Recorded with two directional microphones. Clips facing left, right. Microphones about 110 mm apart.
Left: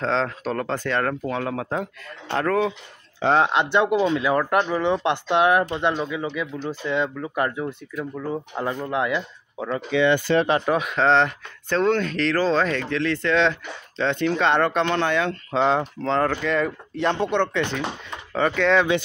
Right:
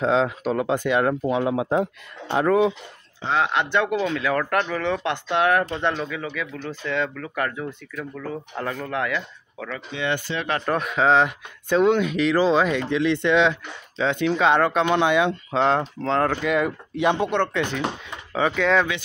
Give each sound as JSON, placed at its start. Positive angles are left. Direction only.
{"t": 0.0, "sound": "speech", "side_deg": -10}
{"t": 3.3, "sound": "speech", "side_deg": 25}
{"t": 10.3, "sound": "speech", "side_deg": 60}
{"t": 10.6, "sound": "speech", "side_deg": 5}
{"t": 15.5, "sound": "speech", "side_deg": 0}